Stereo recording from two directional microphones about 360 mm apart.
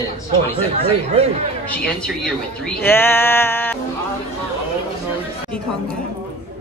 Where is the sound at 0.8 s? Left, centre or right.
Centre.